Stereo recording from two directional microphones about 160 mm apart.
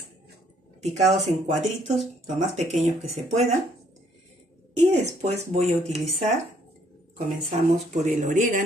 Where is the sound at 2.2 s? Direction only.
45° right (ahead or behind).